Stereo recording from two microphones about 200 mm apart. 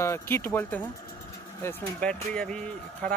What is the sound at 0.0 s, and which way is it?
Speech, 10° left (ahead or behind).